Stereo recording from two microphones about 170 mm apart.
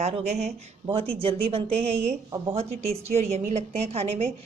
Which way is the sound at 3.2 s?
40° right (ahead or behind).